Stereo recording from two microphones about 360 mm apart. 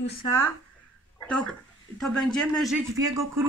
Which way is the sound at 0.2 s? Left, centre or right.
Centre.